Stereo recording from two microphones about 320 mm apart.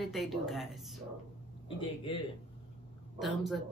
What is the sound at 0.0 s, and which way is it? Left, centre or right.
Speech, centre.